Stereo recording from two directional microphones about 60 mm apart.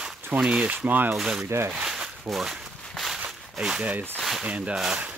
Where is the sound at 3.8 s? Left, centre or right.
Right.